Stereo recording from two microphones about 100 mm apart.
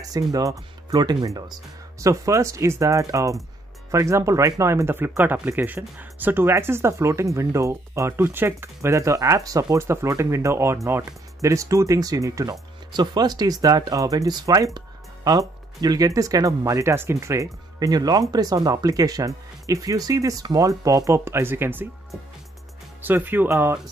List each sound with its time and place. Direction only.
0.1 s speech: 35° right (ahead or behind)
12.9 s speech: 45° right (ahead or behind); by 21.8 s 20° right (ahead or behind)
23.0 s speech: 20° right (ahead or behind)
23.5 s speech: 30° right (ahead or behind)